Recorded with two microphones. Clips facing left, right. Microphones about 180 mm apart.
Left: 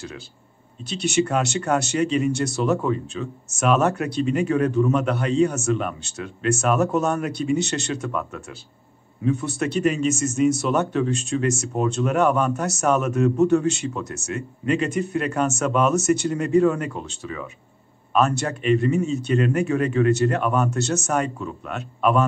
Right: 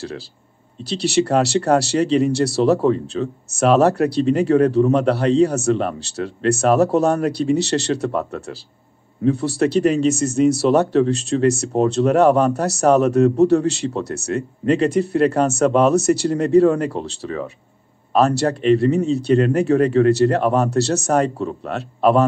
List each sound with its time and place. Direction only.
0.8 s speech: 35° right (ahead or behind)